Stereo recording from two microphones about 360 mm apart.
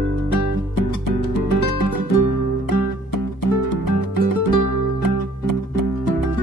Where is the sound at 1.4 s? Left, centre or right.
Left.